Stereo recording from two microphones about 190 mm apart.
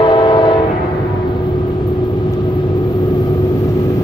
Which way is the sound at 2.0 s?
25° left (ahead or behind).